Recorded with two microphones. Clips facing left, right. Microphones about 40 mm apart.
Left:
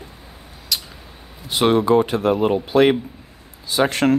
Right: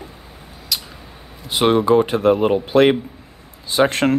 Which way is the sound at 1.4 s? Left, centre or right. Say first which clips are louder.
Right 1 dB; centre.